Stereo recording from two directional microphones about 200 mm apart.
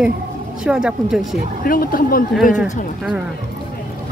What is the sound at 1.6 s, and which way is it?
Speech, 45° left (ahead or behind).